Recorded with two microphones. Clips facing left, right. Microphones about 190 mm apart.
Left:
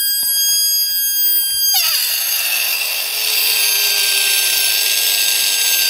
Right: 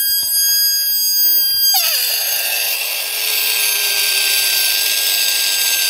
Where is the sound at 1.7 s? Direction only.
60° right (ahead or behind).